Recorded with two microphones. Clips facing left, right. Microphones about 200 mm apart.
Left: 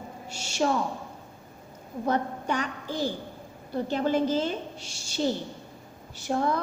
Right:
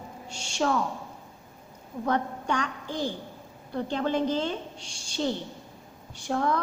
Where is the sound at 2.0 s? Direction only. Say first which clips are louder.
Even; 5° left (ahead or behind).